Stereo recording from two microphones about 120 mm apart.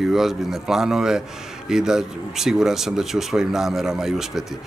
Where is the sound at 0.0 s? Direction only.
5° right (ahead or behind).